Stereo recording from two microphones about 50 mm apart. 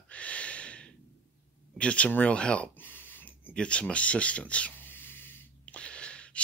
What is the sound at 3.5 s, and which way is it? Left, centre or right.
Speech, left.